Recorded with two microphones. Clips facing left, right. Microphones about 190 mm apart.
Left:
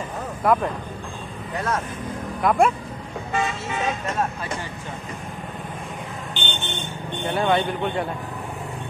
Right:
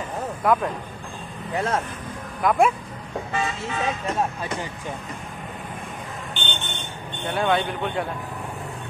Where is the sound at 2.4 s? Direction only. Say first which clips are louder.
Even; centre (ahead or behind).